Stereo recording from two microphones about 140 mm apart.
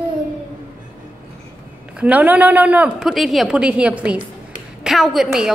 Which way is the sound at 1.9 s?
10° right (ahead or behind).